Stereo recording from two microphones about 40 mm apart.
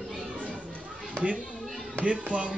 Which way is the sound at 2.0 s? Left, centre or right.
Right.